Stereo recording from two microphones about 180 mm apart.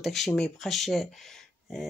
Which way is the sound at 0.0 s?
Centre (ahead or behind).